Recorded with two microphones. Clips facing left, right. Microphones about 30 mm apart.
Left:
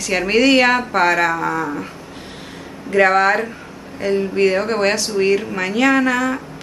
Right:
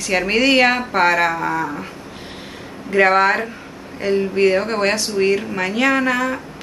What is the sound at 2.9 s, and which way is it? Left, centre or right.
Speech, centre.